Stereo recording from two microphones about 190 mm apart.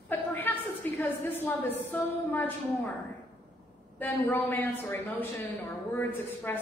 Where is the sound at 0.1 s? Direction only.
10° left (ahead or behind).